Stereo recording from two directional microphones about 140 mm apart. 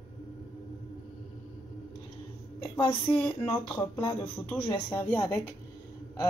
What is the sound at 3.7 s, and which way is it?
Speech, 25° left (ahead or behind).